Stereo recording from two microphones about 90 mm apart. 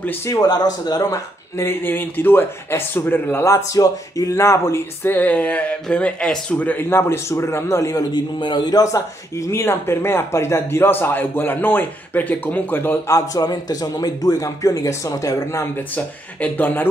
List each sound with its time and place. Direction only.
0.3 s speech: 45° left (ahead or behind)
1.6 s a man's voice: 25° left (ahead or behind); by 8.2 s 40° left (ahead or behind)
8.4 s a man's voice: 55° left (ahead or behind); by 13.2 s 25° left (ahead or behind)
13.3 s speech: 45° left (ahead or behind)
16.3 s a man's voice: 20° left (ahead or behind)